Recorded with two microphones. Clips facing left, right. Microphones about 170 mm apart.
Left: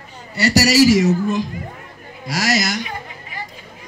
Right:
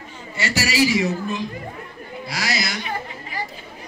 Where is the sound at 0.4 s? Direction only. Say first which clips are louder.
Left 7 dB; 40° left (ahead or behind).